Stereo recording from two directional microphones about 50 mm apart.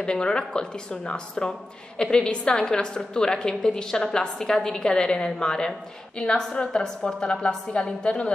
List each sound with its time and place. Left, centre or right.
0.0 s a woman's voice: centre